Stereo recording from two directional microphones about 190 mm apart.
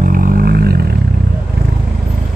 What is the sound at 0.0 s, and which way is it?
Vehicle, 50° right (ahead or behind).